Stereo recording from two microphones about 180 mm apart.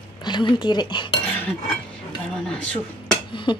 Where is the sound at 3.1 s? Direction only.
25° left (ahead or behind).